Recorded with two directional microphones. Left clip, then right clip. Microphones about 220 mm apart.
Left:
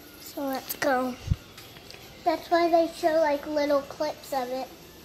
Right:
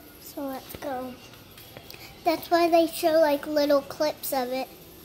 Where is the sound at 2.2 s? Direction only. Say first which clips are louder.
Right 1 dB; 10° right (ahead or behind).